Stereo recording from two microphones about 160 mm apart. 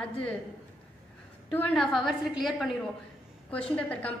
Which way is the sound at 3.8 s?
10° left (ahead or behind).